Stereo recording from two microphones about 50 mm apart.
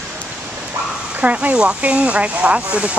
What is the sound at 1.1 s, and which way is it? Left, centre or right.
Speech, right.